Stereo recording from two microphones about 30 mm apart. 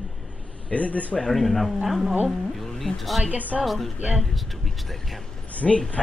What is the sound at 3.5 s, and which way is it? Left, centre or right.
Speech, centre.